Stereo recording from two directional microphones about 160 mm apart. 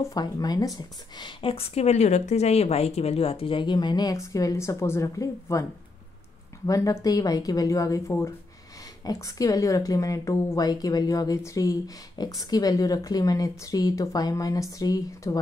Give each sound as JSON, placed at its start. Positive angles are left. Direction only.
{"t": 0.0, "sound": "a woman's voice", "side_deg": 25}